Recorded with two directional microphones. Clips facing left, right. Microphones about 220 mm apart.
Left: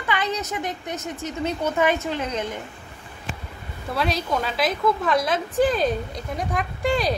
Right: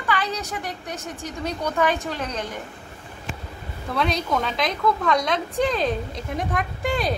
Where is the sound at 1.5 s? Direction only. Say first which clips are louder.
Left 1 dB; 5° left (ahead or behind).